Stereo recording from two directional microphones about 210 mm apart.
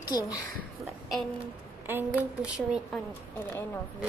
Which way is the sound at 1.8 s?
10° right (ahead or behind).